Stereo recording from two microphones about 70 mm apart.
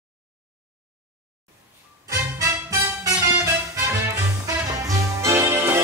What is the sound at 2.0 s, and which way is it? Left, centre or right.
Music, right.